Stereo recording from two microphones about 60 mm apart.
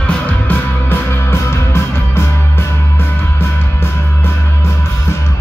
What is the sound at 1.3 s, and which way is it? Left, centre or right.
Music, left.